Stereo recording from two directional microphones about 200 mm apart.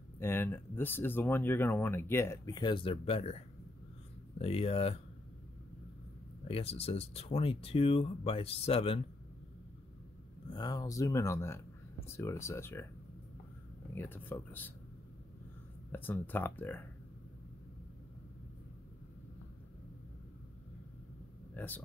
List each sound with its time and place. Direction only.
0.2 s speech: 10° left (ahead or behind); by 4.9 s 30° left (ahead or behind)
6.4 s speech: 30° left (ahead or behind)
10.5 s speech: 20° left (ahead or behind)
13.9 s speech: 10° left (ahead or behind)
15.9 s speech: 10° left (ahead or behind)
21.5 s speech: 10° left (ahead or behind)